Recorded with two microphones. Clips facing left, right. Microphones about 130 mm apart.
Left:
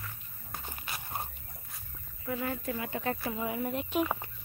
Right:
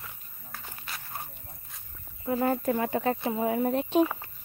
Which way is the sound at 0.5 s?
15° left (ahead or behind).